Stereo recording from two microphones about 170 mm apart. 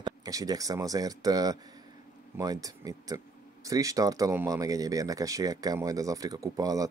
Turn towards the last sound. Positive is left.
turn(degrees=-20)  # may be behind; listen again after turning